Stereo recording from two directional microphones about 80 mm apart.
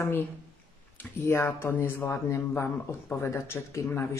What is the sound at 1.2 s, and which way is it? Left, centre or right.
A man's voice, left.